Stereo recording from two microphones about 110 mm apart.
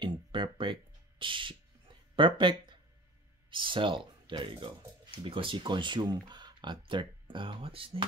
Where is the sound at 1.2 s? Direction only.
50° right (ahead or behind).